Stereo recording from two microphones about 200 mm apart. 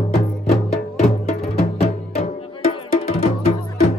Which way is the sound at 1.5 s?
30° left (ahead or behind).